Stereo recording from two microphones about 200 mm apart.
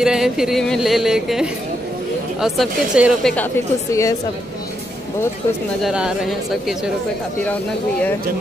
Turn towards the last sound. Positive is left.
turn(degrees=0)  # may be behind; listen again after turning